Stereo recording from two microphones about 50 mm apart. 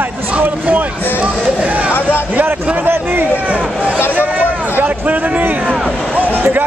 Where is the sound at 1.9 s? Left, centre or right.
Left.